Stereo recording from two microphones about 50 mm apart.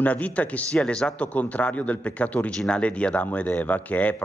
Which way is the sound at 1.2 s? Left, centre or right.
Left.